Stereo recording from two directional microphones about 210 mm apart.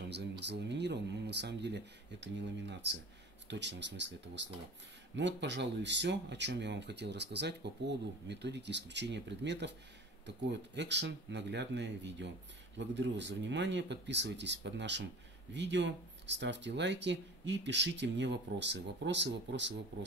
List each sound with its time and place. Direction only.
0.1 s speech: 55° right (ahead or behind)